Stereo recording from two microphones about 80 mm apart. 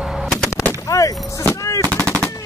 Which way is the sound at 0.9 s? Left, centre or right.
Left.